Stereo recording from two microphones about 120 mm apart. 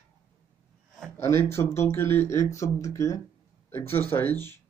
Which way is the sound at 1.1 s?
20° left (ahead or behind).